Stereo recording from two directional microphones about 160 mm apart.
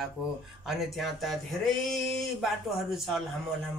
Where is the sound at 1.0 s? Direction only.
Centre (ahead or behind).